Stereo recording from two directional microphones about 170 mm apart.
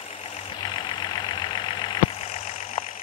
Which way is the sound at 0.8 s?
25° left (ahead or behind).